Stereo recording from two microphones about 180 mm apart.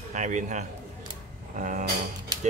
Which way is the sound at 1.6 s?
45° right (ahead or behind).